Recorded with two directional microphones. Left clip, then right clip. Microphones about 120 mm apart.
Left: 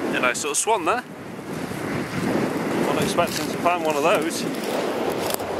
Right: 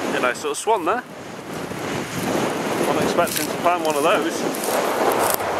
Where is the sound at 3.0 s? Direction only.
20° left (ahead or behind).